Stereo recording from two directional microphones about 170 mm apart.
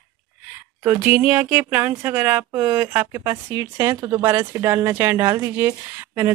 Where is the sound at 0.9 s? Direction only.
10° right (ahead or behind).